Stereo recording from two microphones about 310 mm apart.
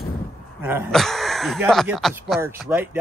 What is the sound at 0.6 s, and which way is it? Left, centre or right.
Speech, centre.